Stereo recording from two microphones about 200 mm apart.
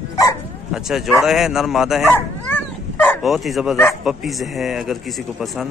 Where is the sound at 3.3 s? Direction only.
Centre (ahead or behind).